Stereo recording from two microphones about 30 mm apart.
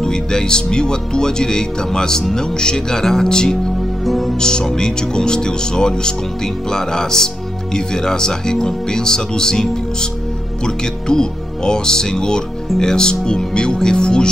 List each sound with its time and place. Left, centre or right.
0.0 s speech: left
4.0 s music: centre
4.4 s speech: left